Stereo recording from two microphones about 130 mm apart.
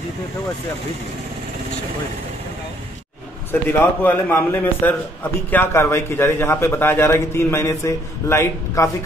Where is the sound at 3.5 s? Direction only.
15° left (ahead or behind).